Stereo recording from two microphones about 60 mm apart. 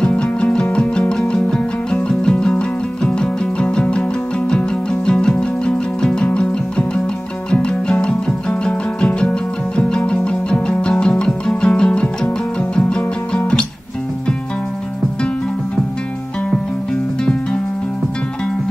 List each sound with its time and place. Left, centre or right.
0.0 s music: centre
17.2 s music: centre